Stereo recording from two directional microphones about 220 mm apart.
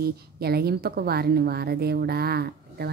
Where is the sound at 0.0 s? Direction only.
45° right (ahead or behind).